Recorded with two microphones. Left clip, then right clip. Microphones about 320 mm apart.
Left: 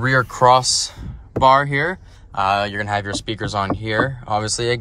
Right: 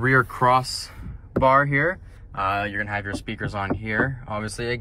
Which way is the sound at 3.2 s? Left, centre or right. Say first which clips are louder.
Left 6 dB; centre.